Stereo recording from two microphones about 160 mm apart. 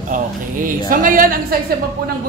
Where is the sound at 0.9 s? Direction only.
60° right (ahead or behind).